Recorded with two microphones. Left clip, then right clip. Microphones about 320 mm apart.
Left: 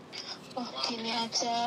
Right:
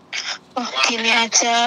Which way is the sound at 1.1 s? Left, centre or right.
Right.